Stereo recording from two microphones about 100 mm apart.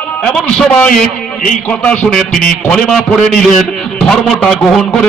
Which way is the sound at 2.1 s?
5° left (ahead or behind).